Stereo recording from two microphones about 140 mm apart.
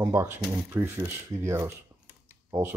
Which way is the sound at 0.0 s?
20° right (ahead or behind).